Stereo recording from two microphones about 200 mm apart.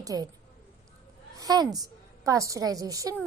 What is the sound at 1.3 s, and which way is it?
A woman's voice, 20° right (ahead or behind).